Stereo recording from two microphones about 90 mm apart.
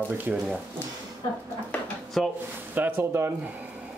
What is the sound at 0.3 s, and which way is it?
Speech, 15° right (ahead or behind).